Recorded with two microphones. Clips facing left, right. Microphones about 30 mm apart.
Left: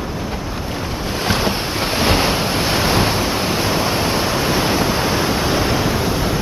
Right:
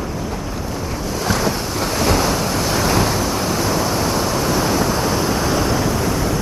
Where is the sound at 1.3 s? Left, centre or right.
Left.